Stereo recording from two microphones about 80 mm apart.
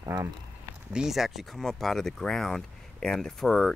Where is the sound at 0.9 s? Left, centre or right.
Centre.